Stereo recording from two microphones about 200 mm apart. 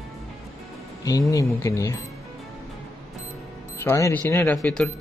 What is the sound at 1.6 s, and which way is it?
Speech, 15° left (ahead or behind).